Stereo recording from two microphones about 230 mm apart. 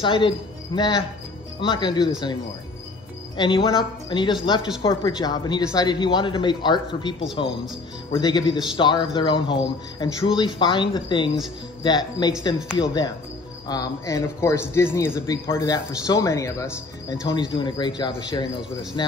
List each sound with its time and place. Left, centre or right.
0.0 s speech: left
1.6 s speech: left
3.3 s speech: left